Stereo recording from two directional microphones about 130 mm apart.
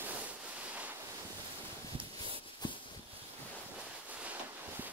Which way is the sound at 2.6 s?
35° left (ahead or behind).